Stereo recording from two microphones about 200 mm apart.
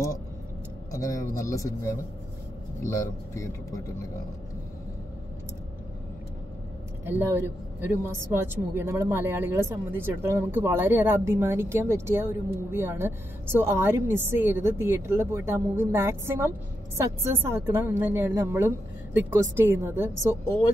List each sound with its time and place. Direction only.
0.9 s speech: 15° left (ahead or behind)
7.1 s a woman's voice: 10° right (ahead or behind)